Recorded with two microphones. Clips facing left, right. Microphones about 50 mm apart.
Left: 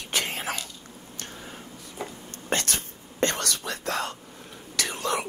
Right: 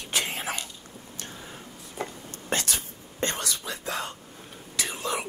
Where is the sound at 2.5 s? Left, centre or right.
Left.